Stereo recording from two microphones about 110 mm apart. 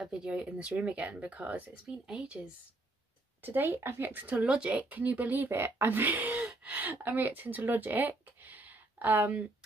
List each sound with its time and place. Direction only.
0.0 s speech: 5° right (ahead or behind)